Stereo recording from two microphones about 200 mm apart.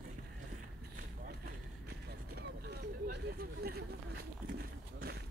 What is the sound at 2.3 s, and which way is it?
Vehicle, 50° right (ahead or behind).